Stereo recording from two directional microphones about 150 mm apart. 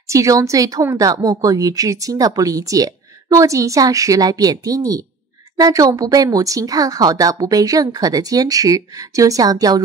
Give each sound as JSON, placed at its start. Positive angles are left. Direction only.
{"t": 0.0, "sound": "a woman's voice", "side_deg": -20}